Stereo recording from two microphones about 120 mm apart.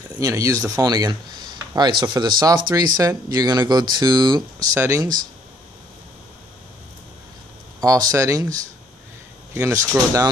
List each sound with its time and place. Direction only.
0.2 s speech: 25° right (ahead or behind)
4.7 s speech: 25° right (ahead or behind)
7.8 s speech: 30° right (ahead or behind)